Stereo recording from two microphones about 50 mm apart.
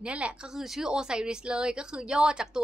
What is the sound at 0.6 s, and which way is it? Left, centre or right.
A woman's voice, centre.